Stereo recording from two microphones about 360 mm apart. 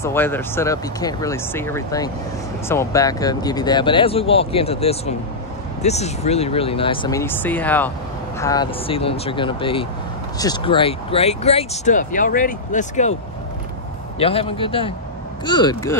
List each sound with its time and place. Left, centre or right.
0.0 s speech: centre
14.2 s speech: centre